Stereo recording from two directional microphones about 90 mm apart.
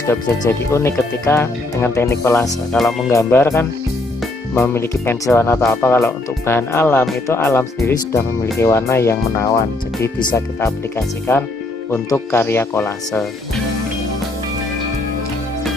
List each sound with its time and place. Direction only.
0.5 s speech: 30° left (ahead or behind)
2.7 s speech: centre (ahead or behind)
3.3 s speech: 25° left (ahead or behind)